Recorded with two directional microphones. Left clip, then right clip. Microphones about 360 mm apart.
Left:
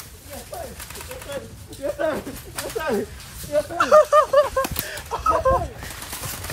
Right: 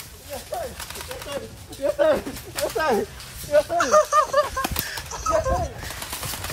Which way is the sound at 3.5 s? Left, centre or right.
Centre.